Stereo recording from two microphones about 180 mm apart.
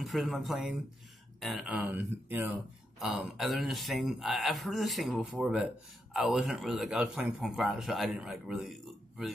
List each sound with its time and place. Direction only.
0.0 s speech: centre (ahead or behind)